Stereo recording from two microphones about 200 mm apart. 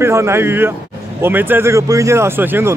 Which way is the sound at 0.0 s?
15° right (ahead or behind).